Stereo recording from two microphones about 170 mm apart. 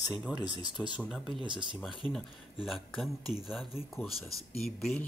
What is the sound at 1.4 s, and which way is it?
Speech, 30° right (ahead or behind).